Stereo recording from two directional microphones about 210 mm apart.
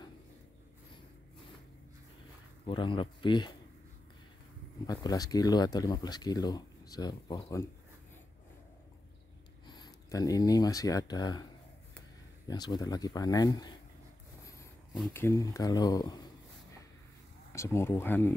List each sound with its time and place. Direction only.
2.6 s speech: 25° left (ahead or behind)
4.8 s speech: 20° left (ahead or behind)
9.7 s speech: 20° left (ahead or behind)
12.4 s speech: 20° left (ahead or behind)
15.1 s speech: 15° left (ahead or behind)
17.5 s speech: 15° left (ahead or behind)